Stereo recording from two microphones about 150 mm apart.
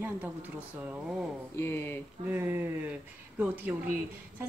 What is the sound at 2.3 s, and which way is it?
A woman's voice, 10° right (ahead or behind).